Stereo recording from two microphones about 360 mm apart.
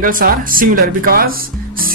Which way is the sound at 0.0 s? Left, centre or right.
Right.